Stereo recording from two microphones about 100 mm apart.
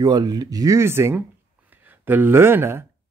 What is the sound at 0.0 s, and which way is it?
Speech, 40° right (ahead or behind).